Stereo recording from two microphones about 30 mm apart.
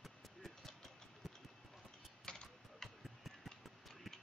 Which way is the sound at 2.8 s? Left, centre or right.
Centre.